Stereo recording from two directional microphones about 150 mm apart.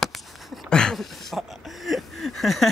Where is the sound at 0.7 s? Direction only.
5° left (ahead or behind).